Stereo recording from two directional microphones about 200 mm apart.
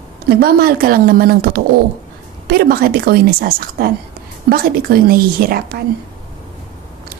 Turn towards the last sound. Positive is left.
turn(degrees=-50)  # may be behind; listen again after turning